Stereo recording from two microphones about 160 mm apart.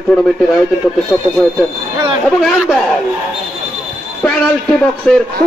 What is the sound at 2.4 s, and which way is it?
Speech, centre (ahead or behind).